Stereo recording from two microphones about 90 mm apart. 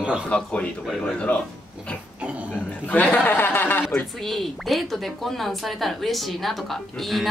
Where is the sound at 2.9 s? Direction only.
20° left (ahead or behind).